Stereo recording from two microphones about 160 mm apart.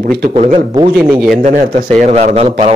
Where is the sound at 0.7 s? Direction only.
20° right (ahead or behind).